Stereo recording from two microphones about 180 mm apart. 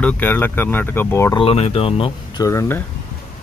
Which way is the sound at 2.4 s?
15° left (ahead or behind).